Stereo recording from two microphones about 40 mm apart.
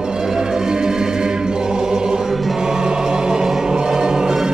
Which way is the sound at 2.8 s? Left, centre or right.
Centre.